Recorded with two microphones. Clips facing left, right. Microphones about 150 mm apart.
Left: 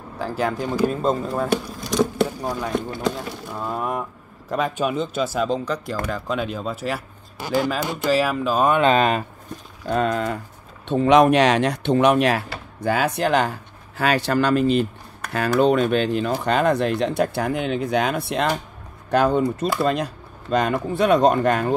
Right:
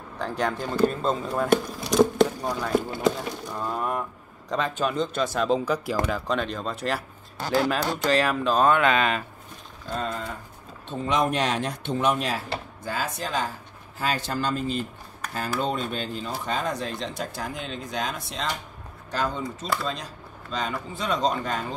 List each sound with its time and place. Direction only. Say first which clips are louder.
0.2 s speech: left 3 dB; 5° left (ahead or behind)
5.7 s speech: even; 10° right (ahead or behind)
6.2 s speech: left 2 dB; 5° left (ahead or behind)
8.7 s speech: left 5 dB; 30° left (ahead or behind)
9.8 s speech: left 9 dB; 70° left (ahead or behind)